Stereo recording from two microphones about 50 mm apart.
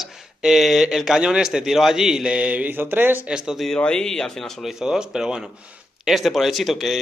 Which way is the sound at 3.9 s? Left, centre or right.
Centre.